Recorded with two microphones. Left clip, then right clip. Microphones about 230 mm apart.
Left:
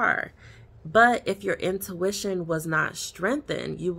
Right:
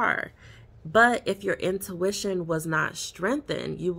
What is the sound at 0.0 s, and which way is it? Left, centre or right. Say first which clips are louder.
Speech: left 1 dB; centre.